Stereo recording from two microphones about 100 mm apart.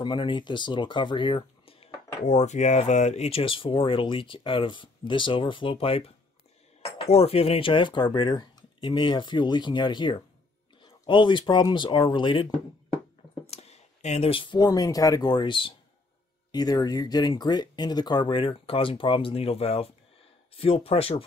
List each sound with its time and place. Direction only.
0.0 s speech: 55° left (ahead or behind); by 6.1 s 70° left (ahead or behind)
7.0 s speech: 90° left; by 8.6 s 45° left (ahead or behind)
8.8 s speech: 55° left (ahead or behind)
13.5 s speech: 90° left; by 15.7 s 55° left (ahead or behind)
16.5 s speech: 40° left (ahead or behind); by 21.2 s 75° left (ahead or behind)